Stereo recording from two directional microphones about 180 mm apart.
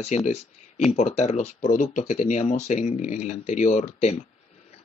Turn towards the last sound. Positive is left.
turn(degrees=40)  # may be behind; listen again after turning